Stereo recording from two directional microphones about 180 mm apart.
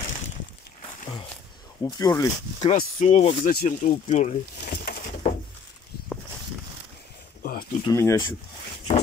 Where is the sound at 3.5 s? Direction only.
50° left (ahead or behind).